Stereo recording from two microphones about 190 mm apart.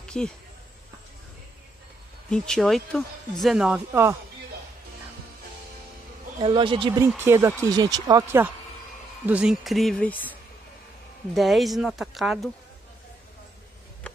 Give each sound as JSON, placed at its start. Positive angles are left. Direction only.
{"t": 0.0, "sound": "a sound", "side_deg": 5}
{"t": 2.2, "sound": "speech", "side_deg": 5}
{"t": 6.4, "sound": "speech", "side_deg": -25}
{"t": 7.1, "sound": "speech", "side_deg": -10}
{"t": 11.3, "sound": "speech", "side_deg": 0}